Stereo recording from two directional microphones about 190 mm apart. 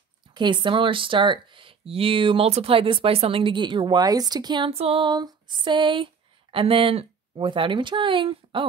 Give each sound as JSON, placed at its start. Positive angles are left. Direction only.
{"t": 0.3, "sound": "speech", "side_deg": -25}